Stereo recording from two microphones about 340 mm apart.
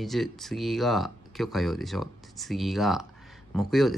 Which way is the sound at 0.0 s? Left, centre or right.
Centre.